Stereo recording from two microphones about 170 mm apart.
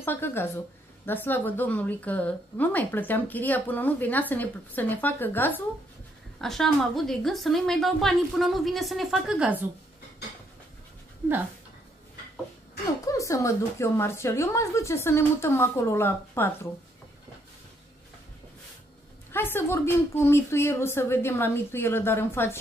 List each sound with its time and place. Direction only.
0.0 s a woman's voice: 15° left (ahead or behind); by 9.7 s 10° right (ahead or behind)
13.0 s a woman's voice: 20° left (ahead or behind)
19.3 s a woman's voice: 15° left (ahead or behind)